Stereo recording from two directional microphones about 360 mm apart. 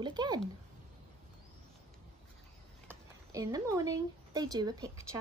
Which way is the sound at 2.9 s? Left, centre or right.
Centre.